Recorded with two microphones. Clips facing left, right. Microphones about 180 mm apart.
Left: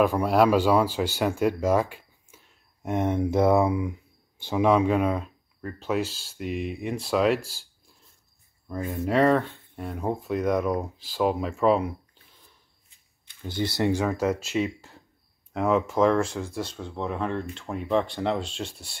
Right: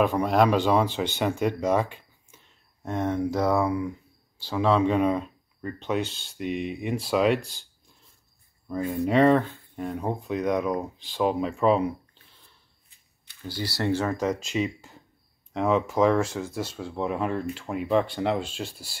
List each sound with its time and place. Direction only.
0.0 s speech: 5° left (ahead or behind)
2.9 s speech: 20° left (ahead or behind); by 7.6 s 5° left (ahead or behind)
8.6 s speech: centre (ahead or behind)
13.4 s speech: 20° left (ahead or behind); by 18.9 s centre (ahead or behind)